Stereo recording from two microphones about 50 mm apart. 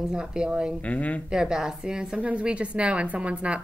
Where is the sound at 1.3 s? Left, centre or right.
Centre.